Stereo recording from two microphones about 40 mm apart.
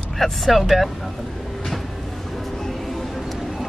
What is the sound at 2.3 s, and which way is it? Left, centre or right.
Music, centre.